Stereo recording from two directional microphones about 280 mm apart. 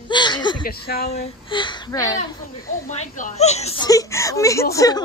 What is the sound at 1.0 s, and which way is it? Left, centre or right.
Speech, left.